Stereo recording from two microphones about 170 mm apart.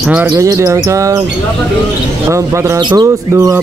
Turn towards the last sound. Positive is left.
turn(degrees=-20)  # may be behind; listen again after turning